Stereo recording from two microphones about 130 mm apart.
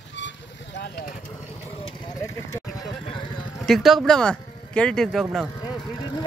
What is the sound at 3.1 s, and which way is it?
Vehicle, 40° left (ahead or behind).